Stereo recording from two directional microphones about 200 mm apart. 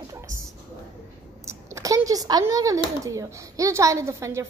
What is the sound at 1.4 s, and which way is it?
Speech, 15° right (ahead or behind).